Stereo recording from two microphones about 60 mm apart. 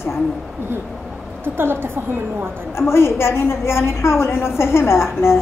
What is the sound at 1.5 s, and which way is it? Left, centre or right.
Speech, right.